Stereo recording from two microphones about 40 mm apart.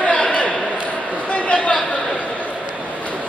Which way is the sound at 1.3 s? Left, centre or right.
Left.